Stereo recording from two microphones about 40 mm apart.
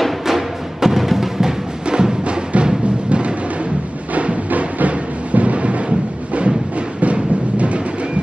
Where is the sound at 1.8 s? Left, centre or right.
Right.